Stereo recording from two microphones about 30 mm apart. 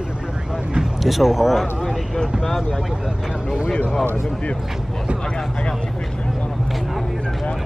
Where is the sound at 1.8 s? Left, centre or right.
Centre.